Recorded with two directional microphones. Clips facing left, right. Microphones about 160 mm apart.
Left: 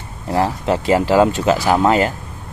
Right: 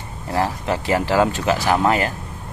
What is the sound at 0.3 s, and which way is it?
Speech, 20° left (ahead or behind).